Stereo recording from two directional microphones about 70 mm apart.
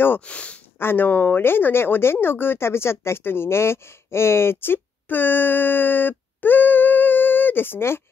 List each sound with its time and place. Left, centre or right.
0.2 s speech: centre
0.7 s speech: left